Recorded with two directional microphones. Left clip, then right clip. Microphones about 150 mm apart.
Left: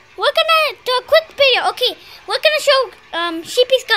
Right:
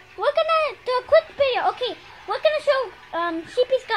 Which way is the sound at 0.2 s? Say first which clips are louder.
Left 6 dB; 25° left (ahead or behind).